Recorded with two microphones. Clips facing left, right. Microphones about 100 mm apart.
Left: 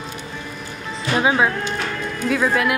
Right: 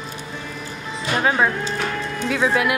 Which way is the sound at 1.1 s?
5° left (ahead or behind).